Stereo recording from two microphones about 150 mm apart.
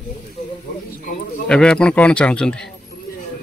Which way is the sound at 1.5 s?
5° left (ahead or behind).